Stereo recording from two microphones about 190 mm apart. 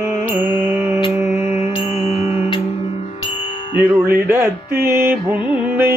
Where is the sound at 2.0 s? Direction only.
30° left (ahead or behind).